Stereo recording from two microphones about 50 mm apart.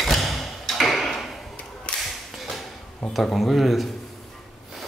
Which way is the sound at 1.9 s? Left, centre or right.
Centre.